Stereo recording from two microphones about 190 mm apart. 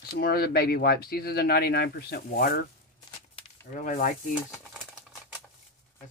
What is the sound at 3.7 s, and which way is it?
Speech, 45° left (ahead or behind).